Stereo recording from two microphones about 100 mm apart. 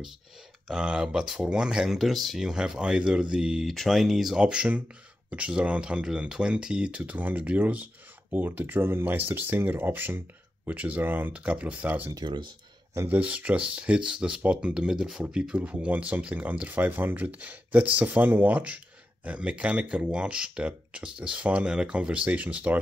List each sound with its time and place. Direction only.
0.7 s speech: 10° right (ahead or behind)
12.1 s speech: 45° right (ahead or behind)
12.9 s speech: 25° right (ahead or behind)